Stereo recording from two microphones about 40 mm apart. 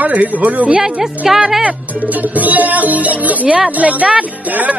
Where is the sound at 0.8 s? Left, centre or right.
Centre.